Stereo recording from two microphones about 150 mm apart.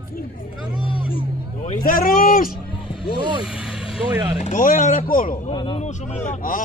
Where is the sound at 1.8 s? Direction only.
75° left (ahead or behind).